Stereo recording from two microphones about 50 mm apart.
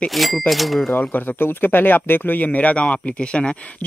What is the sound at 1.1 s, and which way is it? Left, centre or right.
Speech, left.